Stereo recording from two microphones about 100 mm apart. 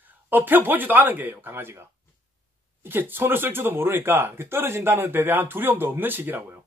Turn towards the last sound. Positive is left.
turn(degrees=-20)  # may be behind; listen again after turning